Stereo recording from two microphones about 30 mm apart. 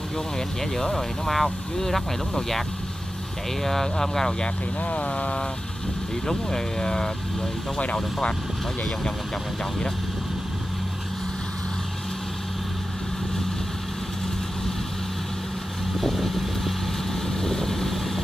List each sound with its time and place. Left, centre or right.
0.9 s speech: centre
3.6 s speech: centre
4.8 s speech: left
6.2 s speech: left
7.8 s speech: left
16.0 s vehicle: centre